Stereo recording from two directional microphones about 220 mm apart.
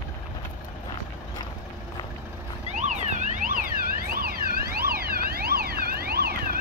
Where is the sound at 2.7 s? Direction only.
35° right (ahead or behind).